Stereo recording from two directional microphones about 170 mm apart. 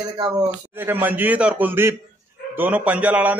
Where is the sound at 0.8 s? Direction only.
10° right (ahead or behind).